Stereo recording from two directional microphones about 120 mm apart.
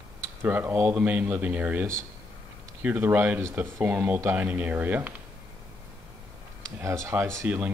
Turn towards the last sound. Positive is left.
turn(degrees=-20)  # may be behind; listen again after turning